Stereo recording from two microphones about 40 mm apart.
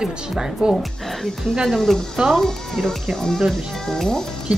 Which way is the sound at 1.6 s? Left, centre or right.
Centre.